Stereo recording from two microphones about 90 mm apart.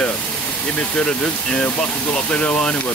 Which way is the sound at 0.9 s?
15° left (ahead or behind).